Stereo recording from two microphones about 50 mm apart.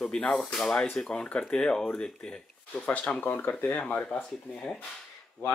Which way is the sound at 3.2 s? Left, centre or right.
Left.